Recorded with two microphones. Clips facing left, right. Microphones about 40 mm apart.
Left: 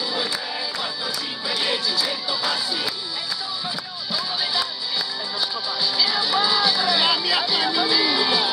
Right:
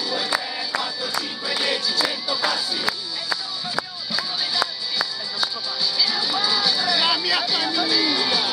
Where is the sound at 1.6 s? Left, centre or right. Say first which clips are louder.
Even; centre.